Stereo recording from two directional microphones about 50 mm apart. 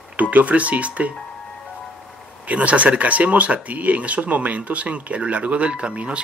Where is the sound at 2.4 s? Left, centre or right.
Right.